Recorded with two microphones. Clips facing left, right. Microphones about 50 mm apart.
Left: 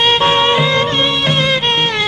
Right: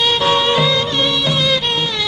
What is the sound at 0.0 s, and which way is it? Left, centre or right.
Music, left.